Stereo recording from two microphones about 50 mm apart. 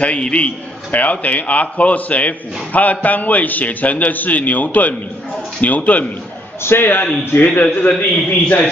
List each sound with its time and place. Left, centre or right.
0.0 s a man's voice: left
6.6 s a man's voice: left
8.3 s a man's voice: left